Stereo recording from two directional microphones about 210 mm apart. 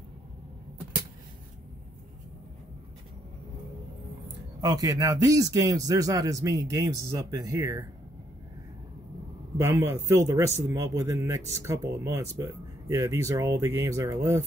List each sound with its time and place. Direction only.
4.6 s speech: 15° right (ahead or behind)
9.6 s speech: 10° right (ahead or behind)